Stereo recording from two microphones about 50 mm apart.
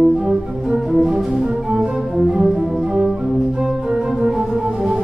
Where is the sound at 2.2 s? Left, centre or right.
Centre.